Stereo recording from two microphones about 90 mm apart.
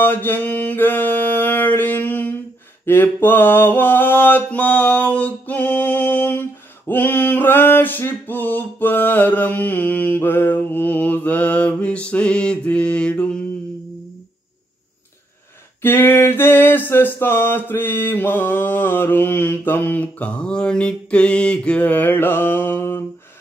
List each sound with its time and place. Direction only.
0.0 s mantra: 20° left (ahead or behind)
15.8 s mantra: 25° left (ahead or behind)